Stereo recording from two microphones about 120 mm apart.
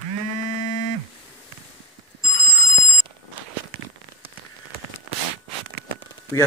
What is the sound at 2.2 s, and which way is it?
Telephone bell ringing, 45° right (ahead or behind).